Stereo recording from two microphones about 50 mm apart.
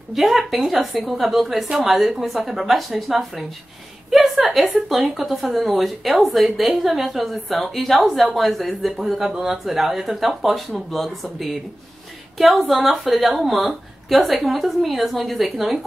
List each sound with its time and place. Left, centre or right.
0.1 s speech: centre
12.4 s speech: centre